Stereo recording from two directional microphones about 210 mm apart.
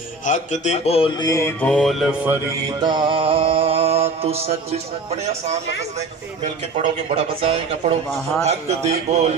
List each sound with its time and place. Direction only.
0.2 s speech: 35° left (ahead or behind); by 2.1 s centre (ahead or behind)
2.8 s mantra: 20° right (ahead or behind)
7.1 s a man's voice: 30° right (ahead or behind)